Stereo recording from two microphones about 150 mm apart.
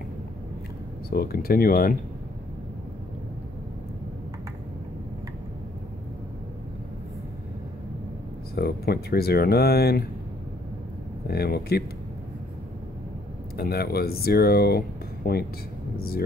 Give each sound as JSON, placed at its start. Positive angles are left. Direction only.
{"t": 1.1, "sound": "speech", "side_deg": 90}
{"t": 8.5, "sound": "speech", "side_deg": 90}
{"t": 11.2, "sound": "speech", "side_deg": 90}
{"t": 13.6, "sound": "speech", "side_deg": 90}